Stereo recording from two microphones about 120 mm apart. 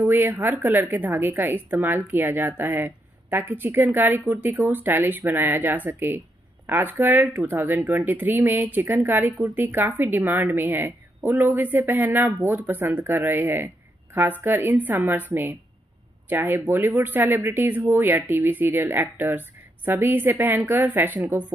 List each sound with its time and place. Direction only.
0.0 s a woman's voice: 15° right (ahead or behind)